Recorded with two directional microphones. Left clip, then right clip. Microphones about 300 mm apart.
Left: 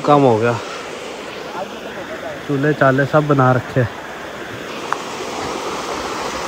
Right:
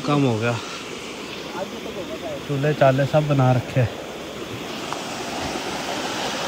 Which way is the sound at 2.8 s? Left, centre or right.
Centre.